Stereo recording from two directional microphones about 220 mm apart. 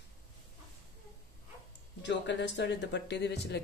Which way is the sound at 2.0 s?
55° left (ahead or behind).